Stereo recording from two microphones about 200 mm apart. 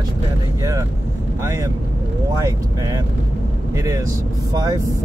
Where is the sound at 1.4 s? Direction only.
15° right (ahead or behind).